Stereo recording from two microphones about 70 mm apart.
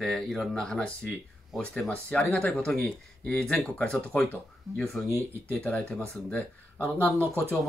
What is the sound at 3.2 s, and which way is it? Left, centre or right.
Speech, centre.